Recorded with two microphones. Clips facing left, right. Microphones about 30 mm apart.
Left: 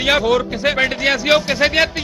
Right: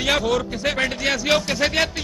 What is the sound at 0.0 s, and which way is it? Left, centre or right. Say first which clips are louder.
Speech: left 5 dB; left.